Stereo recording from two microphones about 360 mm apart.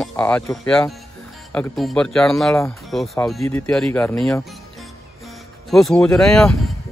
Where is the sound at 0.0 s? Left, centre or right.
Centre.